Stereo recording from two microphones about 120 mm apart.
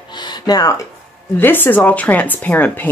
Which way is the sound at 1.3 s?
15° left (ahead or behind).